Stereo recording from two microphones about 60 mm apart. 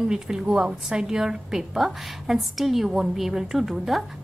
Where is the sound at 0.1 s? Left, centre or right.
Centre.